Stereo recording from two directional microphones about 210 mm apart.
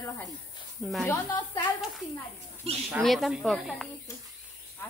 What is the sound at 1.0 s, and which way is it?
Speech, 20° left (ahead or behind).